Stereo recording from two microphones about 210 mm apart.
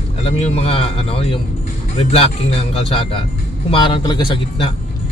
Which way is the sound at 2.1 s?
25° left (ahead or behind).